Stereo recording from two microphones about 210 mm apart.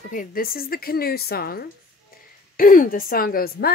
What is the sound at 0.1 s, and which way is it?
A woman's voice, 40° left (ahead or behind).